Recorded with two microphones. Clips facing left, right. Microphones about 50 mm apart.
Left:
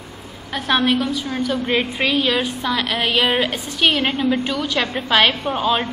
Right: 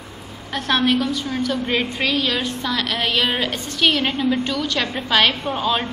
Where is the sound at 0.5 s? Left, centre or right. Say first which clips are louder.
Left 1 dB; centre.